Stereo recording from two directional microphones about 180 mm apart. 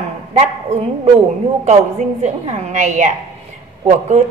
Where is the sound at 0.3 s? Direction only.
35° right (ahead or behind).